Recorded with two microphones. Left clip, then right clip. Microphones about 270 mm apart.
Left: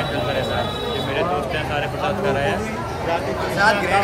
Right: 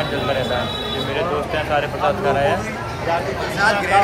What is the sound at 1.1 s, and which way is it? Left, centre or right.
A man's voice, centre.